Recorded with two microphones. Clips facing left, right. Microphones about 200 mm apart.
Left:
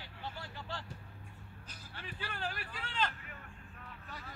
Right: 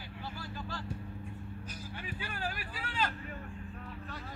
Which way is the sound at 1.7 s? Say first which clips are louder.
Right 4 dB; 10° right (ahead or behind).